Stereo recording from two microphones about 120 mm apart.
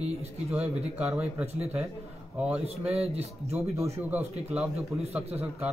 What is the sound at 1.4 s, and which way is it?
Mantra, 20° right (ahead or behind).